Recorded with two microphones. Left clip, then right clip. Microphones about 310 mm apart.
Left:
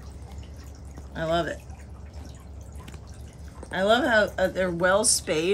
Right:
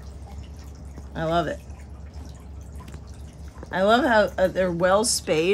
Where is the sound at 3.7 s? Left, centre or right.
Right.